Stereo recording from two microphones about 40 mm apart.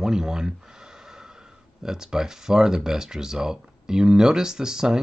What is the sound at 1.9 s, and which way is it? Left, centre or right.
Speech, centre.